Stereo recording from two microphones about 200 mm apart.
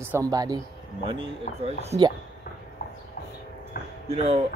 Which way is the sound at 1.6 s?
30° right (ahead or behind).